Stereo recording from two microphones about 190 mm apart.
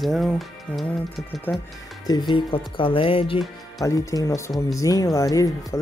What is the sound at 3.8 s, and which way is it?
Speech, 15° left (ahead or behind).